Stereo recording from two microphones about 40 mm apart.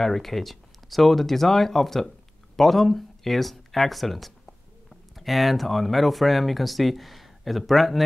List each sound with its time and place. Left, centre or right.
0.0 s speech: centre